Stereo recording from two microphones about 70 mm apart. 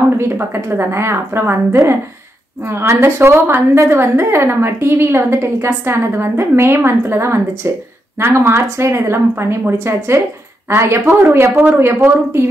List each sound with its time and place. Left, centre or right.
0.2 s a woman's voice: right
11.5 s speech: right
11.8 s a woman's voice: right